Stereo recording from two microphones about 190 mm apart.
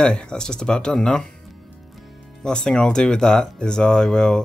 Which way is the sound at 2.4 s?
5° left (ahead or behind).